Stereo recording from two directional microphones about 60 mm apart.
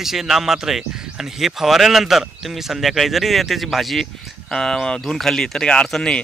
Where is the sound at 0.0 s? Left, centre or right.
Centre.